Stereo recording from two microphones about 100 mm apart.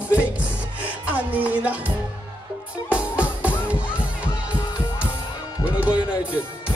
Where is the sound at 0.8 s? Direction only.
15° right (ahead or behind).